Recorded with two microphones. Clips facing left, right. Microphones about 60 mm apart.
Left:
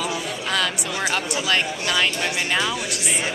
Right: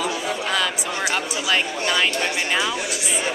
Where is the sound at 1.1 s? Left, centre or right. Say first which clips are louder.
Even; centre.